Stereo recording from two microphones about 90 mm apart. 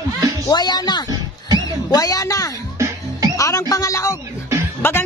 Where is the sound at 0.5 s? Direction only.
50° left (ahead or behind); by 4.2 s 35° left (ahead or behind).